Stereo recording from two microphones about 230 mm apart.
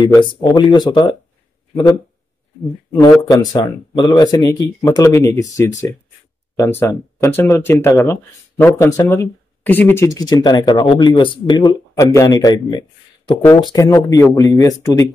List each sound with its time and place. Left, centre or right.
0.0 s speech: centre
3.0 s speech: centre